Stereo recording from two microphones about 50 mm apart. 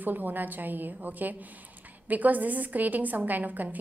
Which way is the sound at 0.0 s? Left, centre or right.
Right.